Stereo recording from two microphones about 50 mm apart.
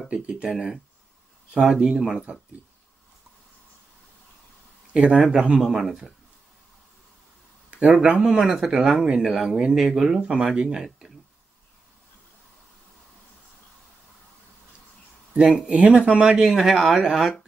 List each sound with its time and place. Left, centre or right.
0.1 s speech: centre
1.5 s speech: centre
4.9 s speech: centre
7.7 s speech: centre
10.2 s speech: centre
15.3 s speech: centre
16.3 s speech: centre